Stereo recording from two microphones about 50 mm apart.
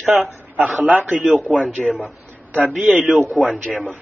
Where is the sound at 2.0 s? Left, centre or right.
Right.